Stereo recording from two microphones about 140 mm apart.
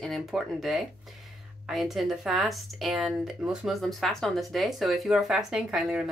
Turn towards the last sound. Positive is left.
turn(degrees=-5)  # may be behind; listen again after turning